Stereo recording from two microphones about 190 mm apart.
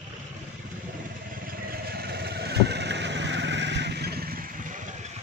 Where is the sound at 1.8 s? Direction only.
55° right (ahead or behind).